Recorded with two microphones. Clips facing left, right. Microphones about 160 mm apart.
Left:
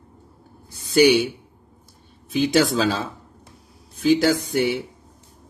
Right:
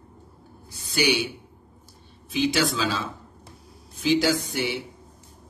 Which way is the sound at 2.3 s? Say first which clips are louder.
Left 5 dB; 45° left (ahead or behind).